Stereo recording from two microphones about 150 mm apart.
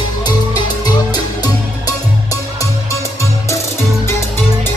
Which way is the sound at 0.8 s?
30° left (ahead or behind).